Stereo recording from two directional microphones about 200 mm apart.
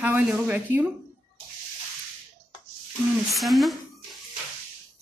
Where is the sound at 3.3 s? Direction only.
Centre (ahead or behind).